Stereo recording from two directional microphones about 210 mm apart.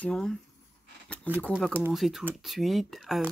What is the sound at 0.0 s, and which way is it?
Speech, 5° left (ahead or behind).